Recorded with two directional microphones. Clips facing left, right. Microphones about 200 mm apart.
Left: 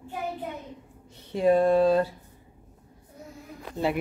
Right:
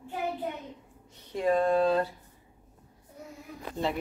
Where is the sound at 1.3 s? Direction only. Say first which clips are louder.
Left 5 dB; 25° left (ahead or behind).